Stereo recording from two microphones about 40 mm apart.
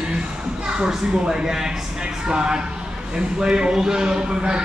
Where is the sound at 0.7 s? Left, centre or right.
Centre.